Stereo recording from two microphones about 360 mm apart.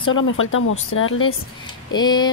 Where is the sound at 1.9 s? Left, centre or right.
Centre.